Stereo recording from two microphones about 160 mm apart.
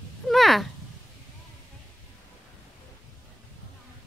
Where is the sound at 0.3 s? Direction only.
Centre (ahead or behind).